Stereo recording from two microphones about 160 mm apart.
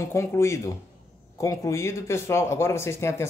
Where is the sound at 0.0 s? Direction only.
15° left (ahead or behind).